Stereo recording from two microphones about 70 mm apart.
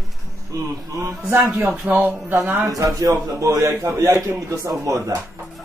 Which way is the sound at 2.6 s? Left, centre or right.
Right.